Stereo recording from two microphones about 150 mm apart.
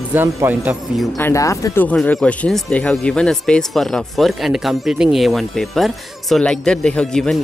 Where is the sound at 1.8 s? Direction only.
5° left (ahead or behind).